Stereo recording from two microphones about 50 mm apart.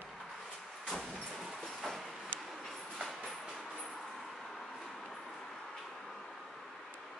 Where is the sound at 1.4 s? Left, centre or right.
Centre.